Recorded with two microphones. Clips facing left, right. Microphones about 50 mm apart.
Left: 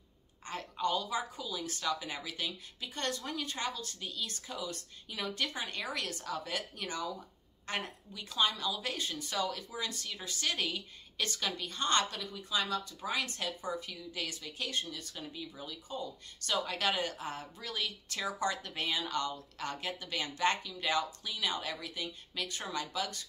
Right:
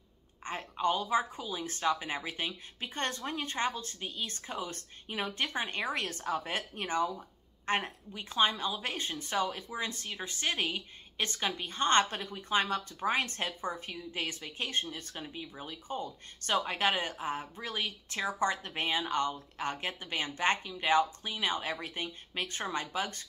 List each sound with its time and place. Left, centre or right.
0.4 s a woman's voice: right